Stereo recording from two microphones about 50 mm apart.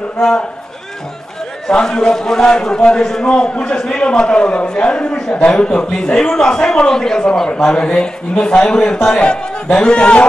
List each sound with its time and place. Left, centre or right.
0.2 s a man's voice: centre
1.7 s a man's voice: centre